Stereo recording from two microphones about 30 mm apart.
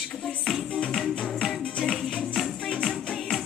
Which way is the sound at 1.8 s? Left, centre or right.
Centre.